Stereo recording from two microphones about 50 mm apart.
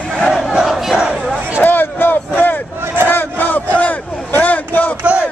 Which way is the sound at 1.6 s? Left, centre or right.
Left.